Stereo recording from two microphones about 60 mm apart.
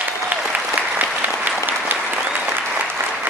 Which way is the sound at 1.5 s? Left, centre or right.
Right.